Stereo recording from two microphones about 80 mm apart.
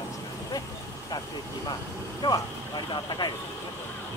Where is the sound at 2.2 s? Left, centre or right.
Left.